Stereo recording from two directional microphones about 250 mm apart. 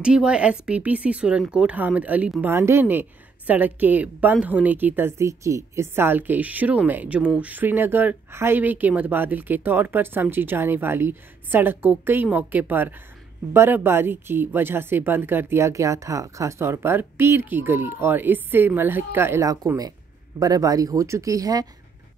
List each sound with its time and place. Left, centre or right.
0.0 s speech: centre